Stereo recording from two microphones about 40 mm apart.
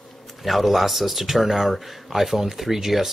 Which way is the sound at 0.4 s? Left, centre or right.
Centre.